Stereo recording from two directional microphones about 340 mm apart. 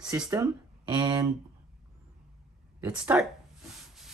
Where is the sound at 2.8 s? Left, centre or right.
Centre.